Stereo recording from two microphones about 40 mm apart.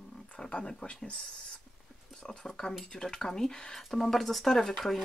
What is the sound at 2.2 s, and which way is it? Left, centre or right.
Speech, centre.